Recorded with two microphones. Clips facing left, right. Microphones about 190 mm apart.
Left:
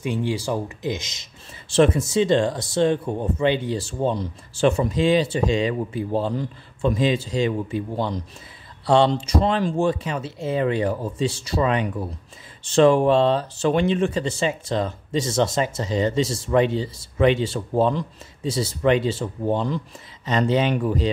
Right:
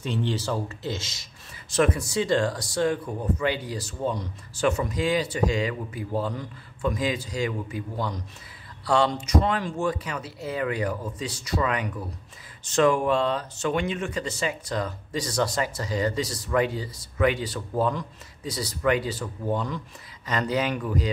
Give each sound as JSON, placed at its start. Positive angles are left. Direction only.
{"t": 0.0, "sound": "speech", "side_deg": 10}